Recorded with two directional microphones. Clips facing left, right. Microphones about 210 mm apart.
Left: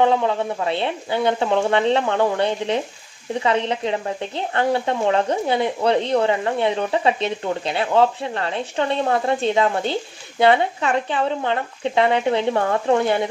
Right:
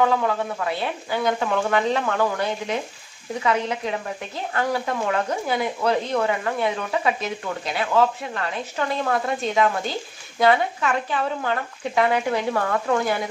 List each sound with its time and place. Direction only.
0.0 s speech: 25° left (ahead or behind)